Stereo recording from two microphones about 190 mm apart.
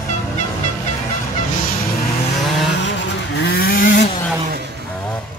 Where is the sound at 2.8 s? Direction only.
60° left (ahead or behind).